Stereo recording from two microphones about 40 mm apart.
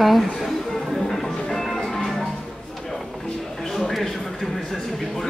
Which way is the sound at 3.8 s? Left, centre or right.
Centre.